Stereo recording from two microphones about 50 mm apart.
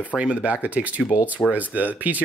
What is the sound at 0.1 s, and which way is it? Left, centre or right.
Speech, right.